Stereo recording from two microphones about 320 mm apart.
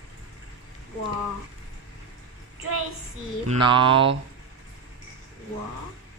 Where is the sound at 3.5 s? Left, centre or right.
Centre.